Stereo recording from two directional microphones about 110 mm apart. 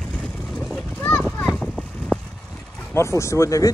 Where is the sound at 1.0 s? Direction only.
10° left (ahead or behind).